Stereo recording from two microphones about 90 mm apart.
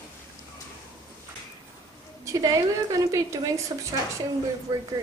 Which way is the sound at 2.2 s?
40° right (ahead or behind).